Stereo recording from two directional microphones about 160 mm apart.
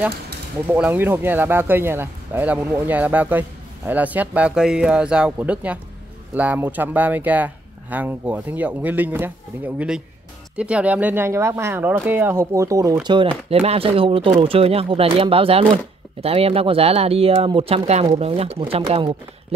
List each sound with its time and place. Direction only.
0.7 s speech: 10° right (ahead or behind)
13.0 s speech: 30° right (ahead or behind)